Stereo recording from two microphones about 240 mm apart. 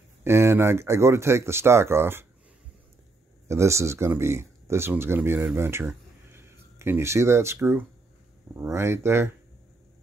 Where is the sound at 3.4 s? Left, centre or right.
Centre.